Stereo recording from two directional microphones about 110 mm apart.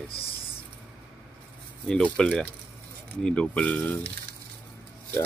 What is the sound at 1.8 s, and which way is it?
Speech, 5° left (ahead or behind).